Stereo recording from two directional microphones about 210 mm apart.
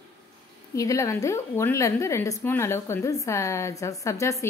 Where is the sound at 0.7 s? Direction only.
15° left (ahead or behind).